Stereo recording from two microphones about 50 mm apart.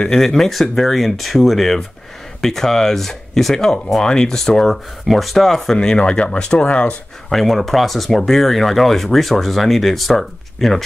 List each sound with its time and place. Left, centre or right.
0.2 s speech: centre
5.8 s speech: centre
7.2 s speech: centre